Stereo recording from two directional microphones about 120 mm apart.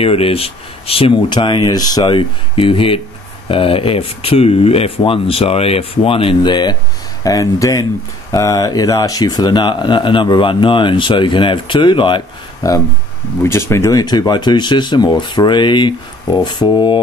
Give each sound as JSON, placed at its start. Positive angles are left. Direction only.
{"t": 0.0, "sound": "speech", "side_deg": 50}
{"t": 7.2, "sound": "speech", "side_deg": 25}
{"t": 12.6, "sound": "speech", "side_deg": 30}